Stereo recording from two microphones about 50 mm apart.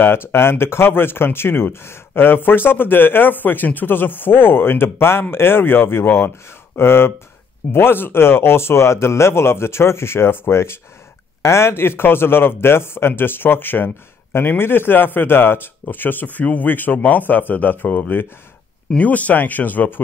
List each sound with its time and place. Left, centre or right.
0.0 s speech: left
11.4 s speech: left
11.7 s speech: left